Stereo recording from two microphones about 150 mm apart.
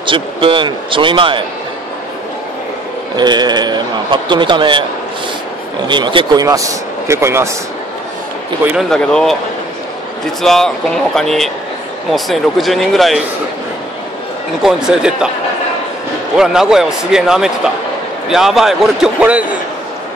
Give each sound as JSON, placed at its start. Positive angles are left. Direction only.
{"t": 0.0, "sound": "a man's voice", "side_deg": -35}
{"t": 3.2, "sound": "a man's voice", "side_deg": -30}
{"t": 5.9, "sound": "speech", "side_deg": -30}
{"t": 8.7, "sound": "speech", "side_deg": 5}
{"t": 10.4, "sound": "speech", "side_deg": 5}
{"t": 14.6, "sound": "speech", "side_deg": -5}
{"t": 16.3, "sound": "speech", "side_deg": -5}